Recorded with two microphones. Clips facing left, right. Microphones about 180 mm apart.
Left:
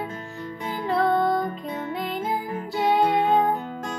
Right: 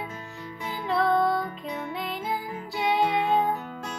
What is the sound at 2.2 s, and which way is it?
Music, 50° left (ahead or behind).